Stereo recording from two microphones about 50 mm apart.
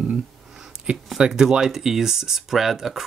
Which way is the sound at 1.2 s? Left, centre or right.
Centre.